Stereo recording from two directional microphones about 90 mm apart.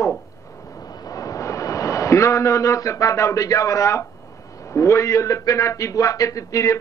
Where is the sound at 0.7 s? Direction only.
45° left (ahead or behind).